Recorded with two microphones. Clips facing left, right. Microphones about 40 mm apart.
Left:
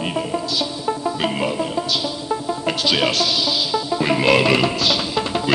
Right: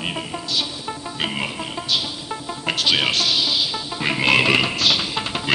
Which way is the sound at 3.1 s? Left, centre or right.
Right.